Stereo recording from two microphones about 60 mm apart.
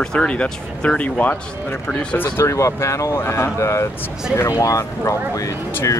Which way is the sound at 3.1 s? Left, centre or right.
Left.